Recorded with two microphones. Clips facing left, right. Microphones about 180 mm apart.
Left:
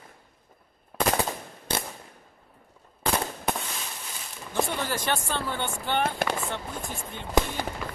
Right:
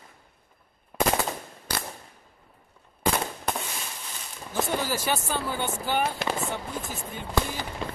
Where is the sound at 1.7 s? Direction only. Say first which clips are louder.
Left 3 dB; 25° left (ahead or behind).